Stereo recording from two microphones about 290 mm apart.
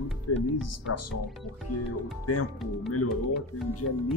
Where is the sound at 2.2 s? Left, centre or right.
Left.